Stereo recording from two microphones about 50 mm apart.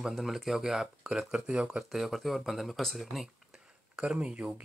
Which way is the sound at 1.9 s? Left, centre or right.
Centre.